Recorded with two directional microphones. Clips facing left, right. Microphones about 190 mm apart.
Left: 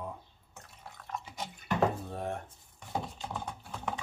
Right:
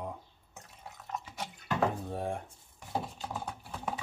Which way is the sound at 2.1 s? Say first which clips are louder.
Right 1 dB; 10° right (ahead or behind).